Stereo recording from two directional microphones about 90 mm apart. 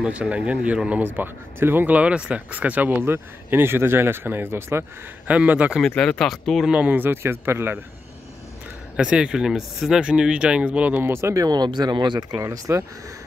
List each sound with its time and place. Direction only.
0.0 s speech: 15° right (ahead or behind)
5.3 s speech: 15° right (ahead or behind)
5.8 s speech: 5° left (ahead or behind)
6.7 s speech: 20° right (ahead or behind)
8.9 s speech: 10° right (ahead or behind); by 11.4 s 30° right (ahead or behind)
11.4 s speech: 50° right (ahead or behind)
12.4 s speech: 35° right (ahead or behind)